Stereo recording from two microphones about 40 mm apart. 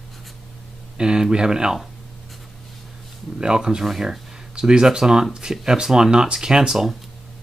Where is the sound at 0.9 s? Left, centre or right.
Centre.